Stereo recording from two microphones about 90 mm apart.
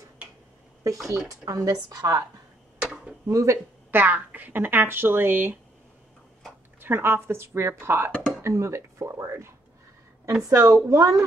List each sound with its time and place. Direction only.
0.8 s speech: 40° right (ahead or behind)
2.8 s a sound: 10° right (ahead or behind)
3.3 s speech: 35° right (ahead or behind)
3.9 s speech: 20° right (ahead or behind)
6.8 s speech: 25° right (ahead or behind)
10.5 s speech: 35° right (ahead or behind)